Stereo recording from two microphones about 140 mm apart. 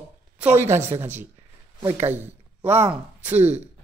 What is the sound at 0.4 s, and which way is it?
Speech, 15° right (ahead or behind).